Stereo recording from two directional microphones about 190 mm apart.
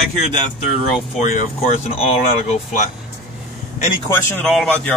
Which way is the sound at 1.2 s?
40° left (ahead or behind).